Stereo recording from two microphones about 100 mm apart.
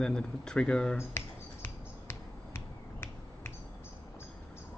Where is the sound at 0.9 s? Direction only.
25° left (ahead or behind).